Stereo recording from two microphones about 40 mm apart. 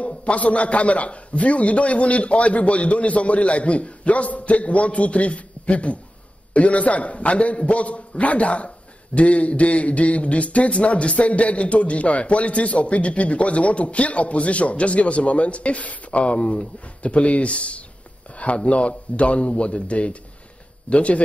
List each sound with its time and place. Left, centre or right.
0.2 s a man's voice: left